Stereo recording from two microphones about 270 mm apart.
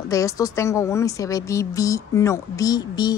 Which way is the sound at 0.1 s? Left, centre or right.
Centre.